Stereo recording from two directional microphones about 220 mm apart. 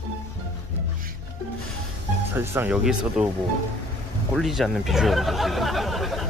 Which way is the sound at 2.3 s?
10° right (ahead or behind).